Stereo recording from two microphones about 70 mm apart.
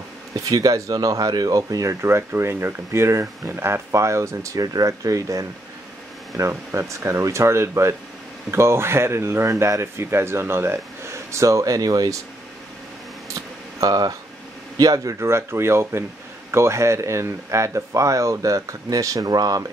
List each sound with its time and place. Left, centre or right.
0.3 s speech: right
2.0 s speech: right
6.3 s speech: right
13.3 s a sound: right
14.8 s speech: right
15.1 s speech: right